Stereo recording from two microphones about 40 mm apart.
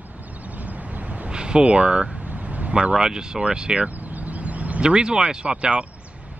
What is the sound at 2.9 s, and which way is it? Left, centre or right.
Speech, centre.